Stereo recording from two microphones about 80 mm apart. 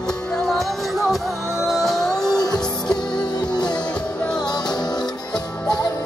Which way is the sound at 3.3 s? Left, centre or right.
Left.